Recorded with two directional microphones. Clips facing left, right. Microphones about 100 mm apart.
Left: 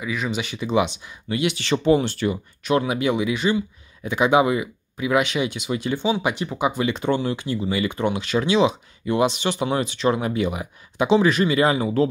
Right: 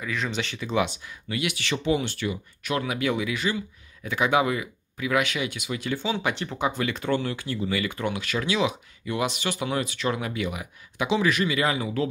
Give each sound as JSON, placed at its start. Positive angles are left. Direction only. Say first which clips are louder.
{"t": 0.0, "sound": "speech", "louder": "left 3 dB", "side_deg": 10}
{"t": 6.1, "sound": "speech", "louder": "left 4 dB", "side_deg": 15}